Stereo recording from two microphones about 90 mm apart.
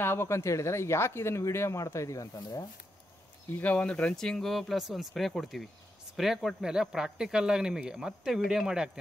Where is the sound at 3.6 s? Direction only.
15° left (ahead or behind).